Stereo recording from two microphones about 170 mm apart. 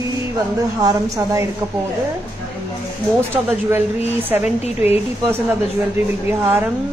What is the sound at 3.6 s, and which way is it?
A woman's voice, 10° right (ahead or behind).